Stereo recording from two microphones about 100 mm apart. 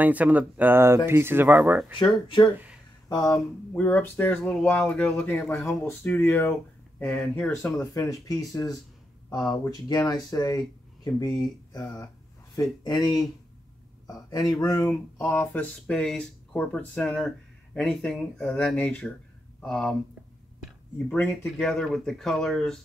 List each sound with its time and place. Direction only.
0.0 s speech: 15° right (ahead or behind)
2.0 s speech: 55° left (ahead or behind)
2.5 s a sound: 15° right (ahead or behind)
3.1 s speech: 35° left (ahead or behind)
3.7 s speech: 20° left (ahead or behind)
5.0 s speech: 20° left (ahead or behind)
7.8 s speech: 35° left (ahead or behind)
12.8 s speech: 40° left (ahead or behind)
14.3 s speech: 40° left (ahead or behind)
15.1 s speech: 25° left (ahead or behind); by 20.0 s 5° left (ahead or behind)
21.5 s speech: 5° left (ahead or behind)